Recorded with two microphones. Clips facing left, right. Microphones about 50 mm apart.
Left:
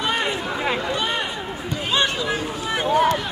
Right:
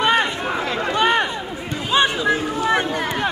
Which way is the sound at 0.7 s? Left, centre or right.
Right.